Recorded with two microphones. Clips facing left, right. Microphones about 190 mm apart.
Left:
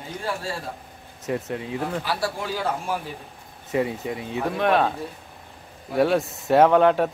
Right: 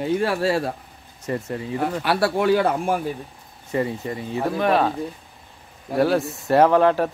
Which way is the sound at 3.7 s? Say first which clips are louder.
Even; centre (ahead or behind).